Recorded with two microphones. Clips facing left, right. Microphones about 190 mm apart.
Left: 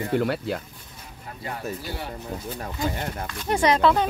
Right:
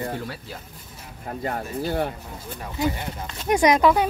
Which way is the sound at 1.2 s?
50° right (ahead or behind).